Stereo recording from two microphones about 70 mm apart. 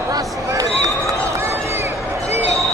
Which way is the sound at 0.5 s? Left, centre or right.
Right.